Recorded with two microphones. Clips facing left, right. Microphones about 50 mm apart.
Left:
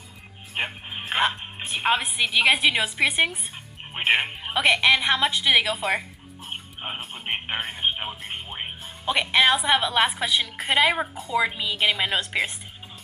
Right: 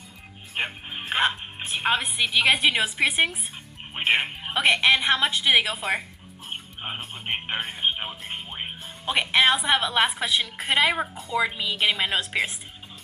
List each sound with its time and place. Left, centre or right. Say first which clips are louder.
0.6 s speech: even; centre